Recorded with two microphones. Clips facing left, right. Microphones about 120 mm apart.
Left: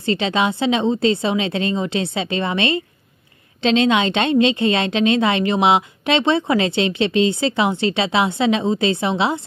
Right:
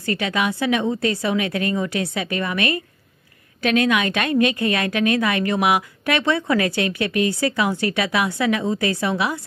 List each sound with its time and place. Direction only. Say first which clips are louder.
0.0 s a woman's voice: left 3 dB; 25° left (ahead or behind)